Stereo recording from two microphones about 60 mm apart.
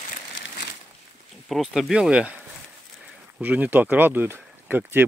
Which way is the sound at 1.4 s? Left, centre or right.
Centre.